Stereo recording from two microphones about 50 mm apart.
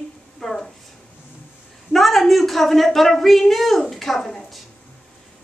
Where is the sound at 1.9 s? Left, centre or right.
Centre.